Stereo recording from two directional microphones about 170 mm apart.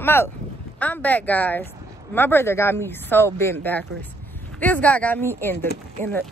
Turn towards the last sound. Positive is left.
turn(degrees=10)  # may be behind; listen again after turning